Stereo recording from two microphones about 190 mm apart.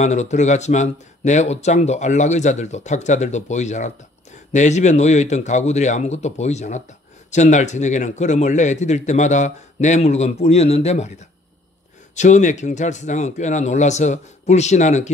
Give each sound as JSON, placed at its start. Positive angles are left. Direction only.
{"t": 0.0, "sound": "speech", "side_deg": 35}
{"t": 12.2, "sound": "speech", "side_deg": 40}